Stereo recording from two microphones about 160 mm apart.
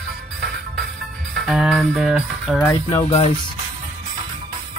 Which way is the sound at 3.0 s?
40° left (ahead or behind).